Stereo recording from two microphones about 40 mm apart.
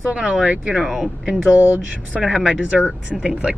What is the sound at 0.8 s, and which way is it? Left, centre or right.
Speech, centre.